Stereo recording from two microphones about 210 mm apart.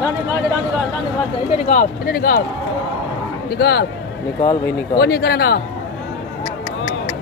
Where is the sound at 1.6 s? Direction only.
40° left (ahead or behind).